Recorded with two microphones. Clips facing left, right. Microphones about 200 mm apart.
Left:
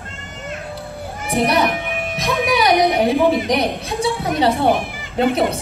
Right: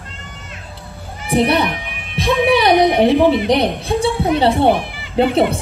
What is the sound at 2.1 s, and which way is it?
A woman's voice, 30° right (ahead or behind).